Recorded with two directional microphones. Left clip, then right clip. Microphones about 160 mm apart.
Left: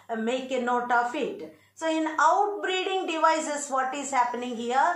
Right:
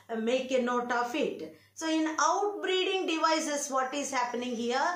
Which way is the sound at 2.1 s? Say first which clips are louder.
Left 8 dB; 35° right (ahead or behind).